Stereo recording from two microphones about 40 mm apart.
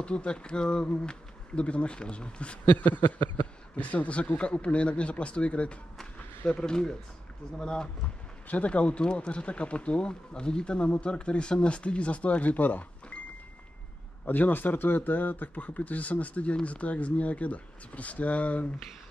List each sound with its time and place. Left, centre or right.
0.0 s speech: left
3.7 s speech: left
6.6 s speech: centre
8.5 s speech: left
14.2 s speech: left